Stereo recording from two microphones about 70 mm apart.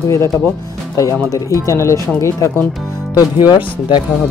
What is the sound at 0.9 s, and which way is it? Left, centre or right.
Speech, left.